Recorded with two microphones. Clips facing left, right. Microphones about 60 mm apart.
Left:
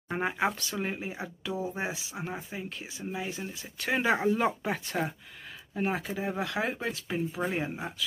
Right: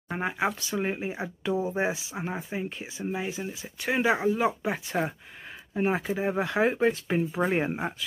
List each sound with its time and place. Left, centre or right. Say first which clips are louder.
0.1 s speech: right 1 dB; centre
0.6 s speech: right 4 dB; centre
3.3 s speech: right 3 dB; centre
5.8 s speech: right 4 dB; right